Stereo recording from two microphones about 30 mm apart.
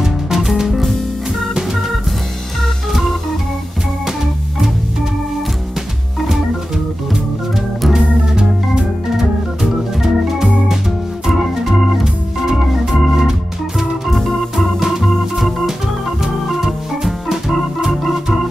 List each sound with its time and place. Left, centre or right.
0.0 s music: centre
9.1 s organ: centre
12.0 s organ: centre
16.6 s organ: centre